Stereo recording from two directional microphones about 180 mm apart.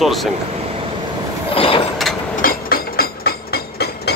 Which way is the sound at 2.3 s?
50° left (ahead or behind).